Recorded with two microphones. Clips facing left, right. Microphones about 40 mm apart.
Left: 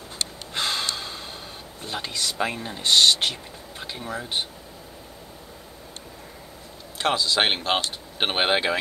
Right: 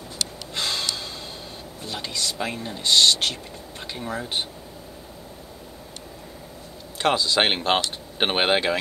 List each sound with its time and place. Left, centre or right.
0.6 s gasp: left
1.8 s speech: left
3.8 s speech: centre
7.0 s speech: centre